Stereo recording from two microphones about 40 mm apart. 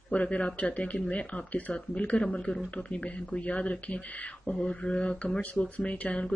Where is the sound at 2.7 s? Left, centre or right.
Left.